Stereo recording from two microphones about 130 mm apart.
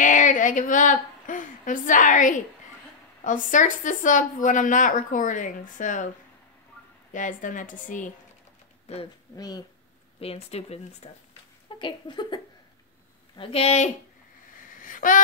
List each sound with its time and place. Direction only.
0.0 s a woman's voice: 80° left
7.1 s speech: 85° left
8.9 s speech: 55° left (ahead or behind)
10.2 s speech: 50° left (ahead or behind)
11.8 s a sound: 35° left (ahead or behind)
13.4 s speech: 50° left (ahead or behind)
14.8 s a sound: 90° left